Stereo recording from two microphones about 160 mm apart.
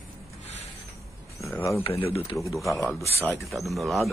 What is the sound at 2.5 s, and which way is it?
Speech, centre (ahead or behind).